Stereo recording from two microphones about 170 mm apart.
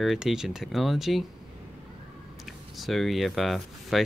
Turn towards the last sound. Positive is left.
turn(degrees=0)  # may be behind; listen again after turning